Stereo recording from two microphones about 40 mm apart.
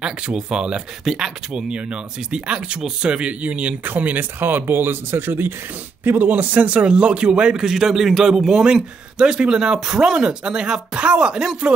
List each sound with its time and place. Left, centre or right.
0.0 s a man's voice: right
1.0 s speech: centre
1.5 s a man's voice: right
3.8 s speech: right
4.4 s speech: right
6.0 s a man's voice: right; by 8.6 s centre
9.2 s a man's voice: right